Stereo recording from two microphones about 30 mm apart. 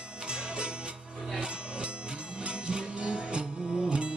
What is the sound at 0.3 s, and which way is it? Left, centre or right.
Music, right.